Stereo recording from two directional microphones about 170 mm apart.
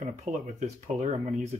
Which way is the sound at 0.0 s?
45° right (ahead or behind).